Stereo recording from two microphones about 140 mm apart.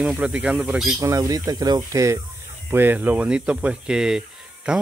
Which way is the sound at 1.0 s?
25° right (ahead or behind).